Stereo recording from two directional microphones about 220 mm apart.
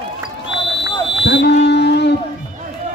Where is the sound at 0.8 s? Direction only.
55° left (ahead or behind).